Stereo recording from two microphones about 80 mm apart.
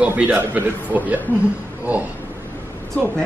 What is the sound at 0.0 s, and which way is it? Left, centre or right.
A man's voice, right.